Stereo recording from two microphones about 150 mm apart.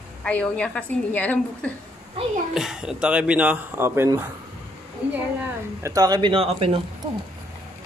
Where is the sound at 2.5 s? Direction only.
5° right (ahead or behind).